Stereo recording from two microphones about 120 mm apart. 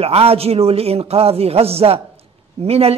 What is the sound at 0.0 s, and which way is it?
A man's voice, 55° right (ahead or behind).